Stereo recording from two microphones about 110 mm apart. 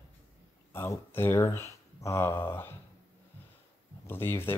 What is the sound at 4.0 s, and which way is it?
Speech, 20° left (ahead or behind).